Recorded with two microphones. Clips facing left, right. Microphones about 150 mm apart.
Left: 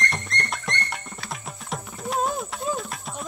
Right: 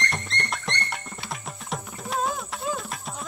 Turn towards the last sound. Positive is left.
turn(degrees=0)  # may be behind; listen again after turning